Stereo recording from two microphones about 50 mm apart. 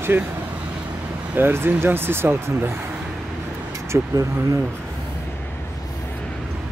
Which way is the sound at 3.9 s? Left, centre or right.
Right.